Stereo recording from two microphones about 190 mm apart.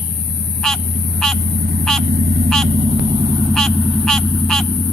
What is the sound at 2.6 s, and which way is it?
Vehicle, 30° right (ahead or behind).